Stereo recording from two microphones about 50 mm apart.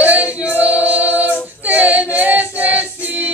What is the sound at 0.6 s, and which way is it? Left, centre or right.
Choir, right.